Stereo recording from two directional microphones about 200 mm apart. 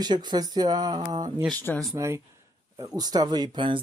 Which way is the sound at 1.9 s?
15° right (ahead or behind).